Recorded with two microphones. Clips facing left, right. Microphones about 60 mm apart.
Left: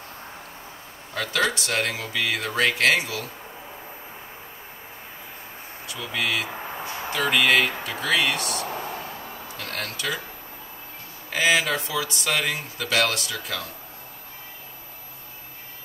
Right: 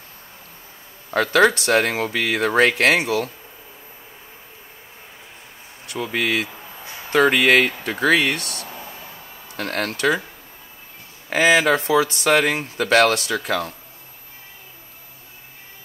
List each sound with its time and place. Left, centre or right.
1.1 s speech: right
5.9 s speech: right
6.4 s a sound: left
7.1 s speech: right
8.5 s a sound: left
9.6 s speech: right
11.3 s speech: right